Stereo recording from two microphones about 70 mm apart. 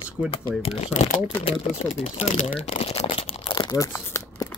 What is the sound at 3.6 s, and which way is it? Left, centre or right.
Crumpling, left.